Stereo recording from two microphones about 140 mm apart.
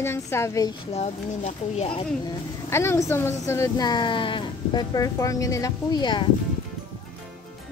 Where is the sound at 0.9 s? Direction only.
50° left (ahead or behind).